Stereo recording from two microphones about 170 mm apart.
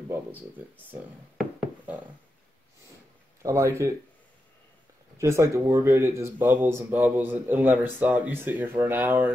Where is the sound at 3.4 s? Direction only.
15° right (ahead or behind).